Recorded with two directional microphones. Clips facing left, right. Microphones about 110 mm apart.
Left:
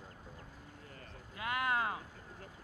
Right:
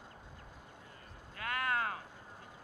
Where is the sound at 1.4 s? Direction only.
15° left (ahead or behind).